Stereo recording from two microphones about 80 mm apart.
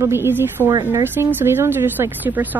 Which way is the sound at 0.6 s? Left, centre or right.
Right.